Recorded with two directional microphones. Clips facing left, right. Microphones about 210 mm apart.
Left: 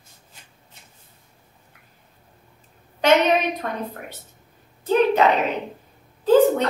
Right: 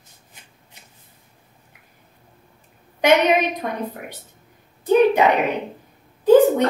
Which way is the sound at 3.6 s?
15° right (ahead or behind).